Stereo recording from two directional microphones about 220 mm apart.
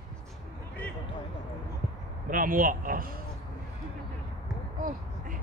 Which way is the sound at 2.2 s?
40° right (ahead or behind).